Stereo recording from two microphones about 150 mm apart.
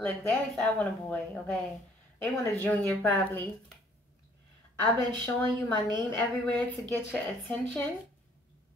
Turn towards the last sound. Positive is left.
turn(degrees=10)  # may be behind; listen again after turning